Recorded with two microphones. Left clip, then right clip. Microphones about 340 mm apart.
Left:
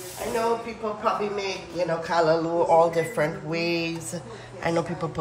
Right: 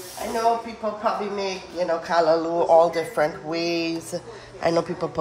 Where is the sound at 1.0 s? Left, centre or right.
Right.